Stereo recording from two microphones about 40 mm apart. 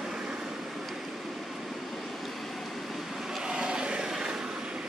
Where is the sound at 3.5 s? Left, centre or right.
Centre.